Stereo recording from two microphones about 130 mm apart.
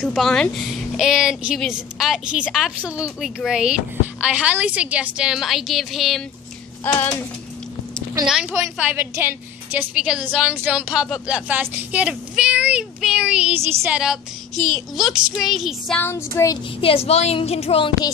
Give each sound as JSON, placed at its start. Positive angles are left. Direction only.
{"t": 0.0, "sound": "a woman's voice", "side_deg": 0}
{"t": 6.8, "sound": "a sound", "side_deg": 15}
{"t": 8.3, "sound": "a woman's voice", "side_deg": -5}
{"t": 8.9, "sound": "a woman's voice", "side_deg": -15}
{"t": 13.6, "sound": "a woman's voice", "side_deg": -20}
{"t": 13.9, "sound": "a woman's voice", "side_deg": -5}
{"t": 16.0, "sound": "a sound", "side_deg": 20}
{"t": 16.8, "sound": "a woman's voice", "side_deg": 50}